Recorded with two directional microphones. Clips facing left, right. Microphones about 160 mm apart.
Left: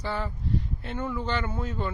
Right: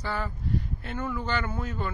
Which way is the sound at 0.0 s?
25° left (ahead or behind).